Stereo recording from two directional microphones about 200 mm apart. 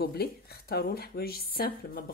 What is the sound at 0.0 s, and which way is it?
Speech, 50° left (ahead or behind).